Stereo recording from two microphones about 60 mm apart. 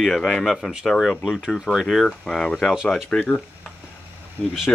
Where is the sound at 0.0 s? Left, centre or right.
Centre.